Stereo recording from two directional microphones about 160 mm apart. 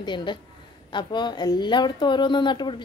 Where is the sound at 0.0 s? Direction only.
30° left (ahead or behind).